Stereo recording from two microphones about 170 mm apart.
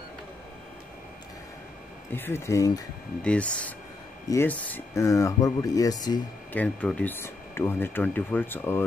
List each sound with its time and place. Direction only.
2.1 s speech: 15° left (ahead or behind)
3.2 s speech: 5° left (ahead or behind); by 6.2 s 25° left (ahead or behind)
6.5 s speech: 10° left (ahead or behind)